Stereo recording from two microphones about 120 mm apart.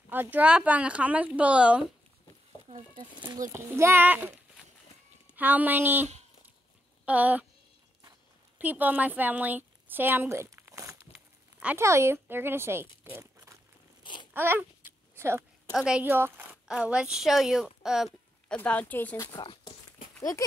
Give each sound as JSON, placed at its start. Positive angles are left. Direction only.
{"t": 0.1, "sound": "speech", "side_deg": -15}
{"t": 3.3, "sound": "a child's voice", "side_deg": -20}
{"t": 7.1, "sound": "speech", "side_deg": -10}
{"t": 8.5, "sound": "a woman's voice", "side_deg": -15}
{"t": 11.1, "sound": "a sound", "side_deg": -10}
{"t": 11.8, "sound": "a child's voice", "side_deg": -25}
{"t": 13.0, "sound": "crumpling", "side_deg": -20}
{"t": 14.3, "sound": "babbling", "side_deg": -20}
{"t": 15.7, "sound": "speech", "side_deg": -5}
{"t": 16.6, "sound": "speech", "side_deg": -5}
{"t": 18.5, "sound": "speech", "side_deg": 10}
{"t": 19.3, "sound": "speech", "side_deg": 40}